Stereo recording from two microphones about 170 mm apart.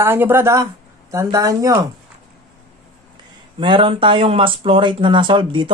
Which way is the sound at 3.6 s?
30° right (ahead or behind).